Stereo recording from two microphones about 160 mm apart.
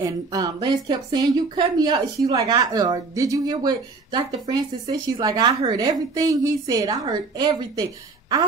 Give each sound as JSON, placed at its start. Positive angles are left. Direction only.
{"t": 0.0, "sound": "speech", "side_deg": -25}